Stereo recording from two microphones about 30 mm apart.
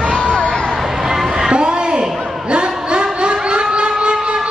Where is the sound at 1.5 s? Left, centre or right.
Right.